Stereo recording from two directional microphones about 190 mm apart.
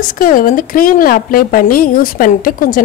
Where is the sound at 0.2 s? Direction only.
45° left (ahead or behind).